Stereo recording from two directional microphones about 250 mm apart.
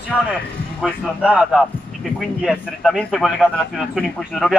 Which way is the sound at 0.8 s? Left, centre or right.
Centre.